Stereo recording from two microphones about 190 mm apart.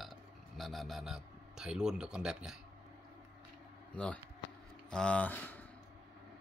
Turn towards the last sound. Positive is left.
turn(degrees=10)  # may be behind; listen again after turning